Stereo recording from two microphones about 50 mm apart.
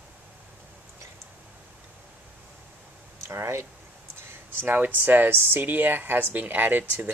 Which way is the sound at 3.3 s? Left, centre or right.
Right.